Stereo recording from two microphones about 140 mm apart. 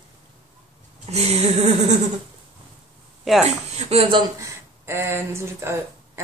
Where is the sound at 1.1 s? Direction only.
50° right (ahead or behind).